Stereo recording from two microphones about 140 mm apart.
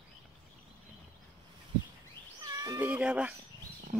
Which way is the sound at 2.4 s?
30° right (ahead or behind).